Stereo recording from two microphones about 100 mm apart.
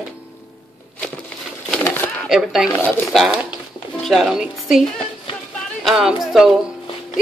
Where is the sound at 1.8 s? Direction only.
20° left (ahead or behind).